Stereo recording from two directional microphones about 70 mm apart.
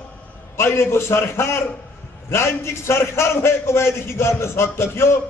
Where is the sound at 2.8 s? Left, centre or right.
Left.